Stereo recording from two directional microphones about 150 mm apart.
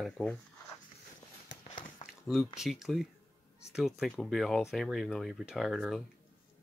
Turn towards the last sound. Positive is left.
turn(degrees=0)  # may be behind; listen again after turning